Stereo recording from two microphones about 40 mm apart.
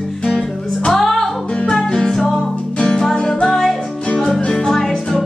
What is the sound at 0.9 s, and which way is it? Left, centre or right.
Music, centre.